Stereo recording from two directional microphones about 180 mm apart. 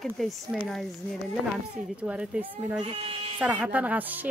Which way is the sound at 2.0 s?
5° right (ahead or behind).